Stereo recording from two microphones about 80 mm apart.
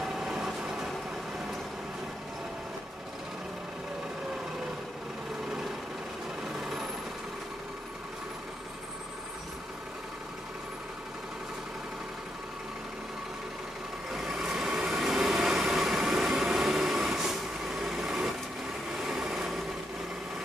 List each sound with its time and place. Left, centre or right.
0.0 s train: centre
6.6 s vehicle: centre
14.1 s vehicle: centre